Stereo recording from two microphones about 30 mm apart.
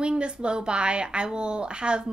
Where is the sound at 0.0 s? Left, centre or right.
Right.